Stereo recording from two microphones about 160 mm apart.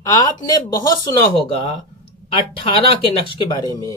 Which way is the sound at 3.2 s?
25° left (ahead or behind).